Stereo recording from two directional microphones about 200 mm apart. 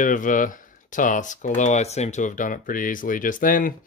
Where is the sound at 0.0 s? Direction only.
40° left (ahead or behind).